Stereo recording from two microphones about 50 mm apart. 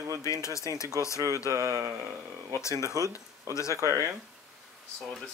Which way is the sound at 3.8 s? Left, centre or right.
Right.